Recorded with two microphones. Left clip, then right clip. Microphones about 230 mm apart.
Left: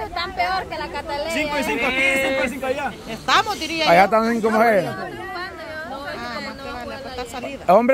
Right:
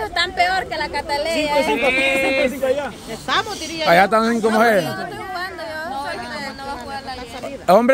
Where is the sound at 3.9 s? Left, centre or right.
Centre.